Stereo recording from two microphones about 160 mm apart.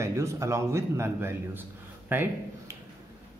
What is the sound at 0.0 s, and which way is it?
Speech, 20° right (ahead or behind).